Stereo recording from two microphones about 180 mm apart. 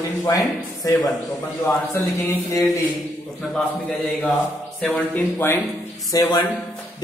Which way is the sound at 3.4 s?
Centre (ahead or behind).